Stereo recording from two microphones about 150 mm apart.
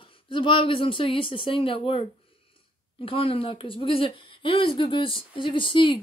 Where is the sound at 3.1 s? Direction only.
40° left (ahead or behind).